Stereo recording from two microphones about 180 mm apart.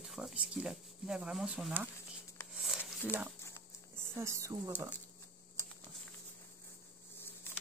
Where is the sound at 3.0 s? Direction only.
10° right (ahead or behind).